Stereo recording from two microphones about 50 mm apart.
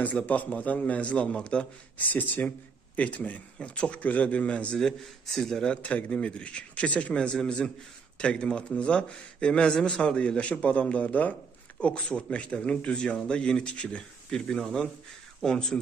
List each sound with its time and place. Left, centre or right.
0.0 s a man's voice: left
2.0 s speech: left
3.5 s a man's voice: left
4.7 s speech: centre
5.8 s a man's voice: left
11.8 s a man's voice: left